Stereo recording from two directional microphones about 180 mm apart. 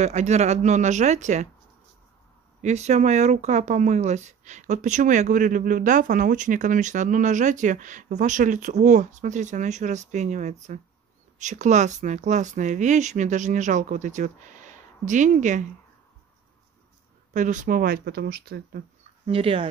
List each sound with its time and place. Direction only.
0.0 s speech: 40° right (ahead or behind)
2.6 s speech: 40° right (ahead or behind)
17.3 s speech: 45° right (ahead or behind); by 18.8 s 65° right (ahead or behind)
19.2 s speech: 30° right (ahead or behind)